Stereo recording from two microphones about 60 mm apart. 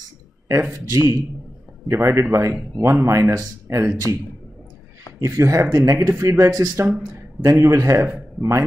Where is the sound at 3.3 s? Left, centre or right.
Right.